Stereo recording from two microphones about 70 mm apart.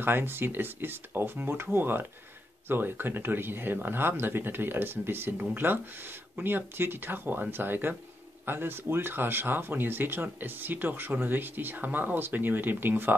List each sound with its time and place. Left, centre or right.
0.0 s speech: right